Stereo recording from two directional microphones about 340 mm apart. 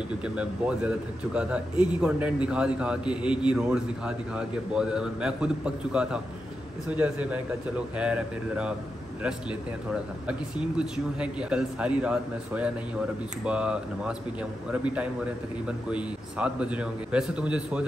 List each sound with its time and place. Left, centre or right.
0.2 s speech: centre
10.2 s speech: centre